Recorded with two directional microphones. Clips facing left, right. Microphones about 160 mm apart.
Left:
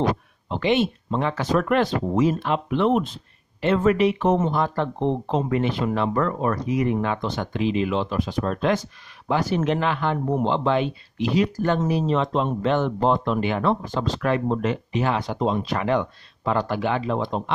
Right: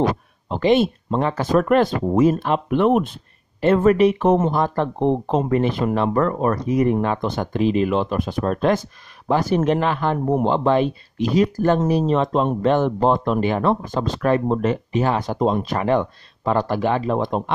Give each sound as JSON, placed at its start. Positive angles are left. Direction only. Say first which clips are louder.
{"t": 0.5, "sound": "speech", "louder": "right 4 dB", "side_deg": -40}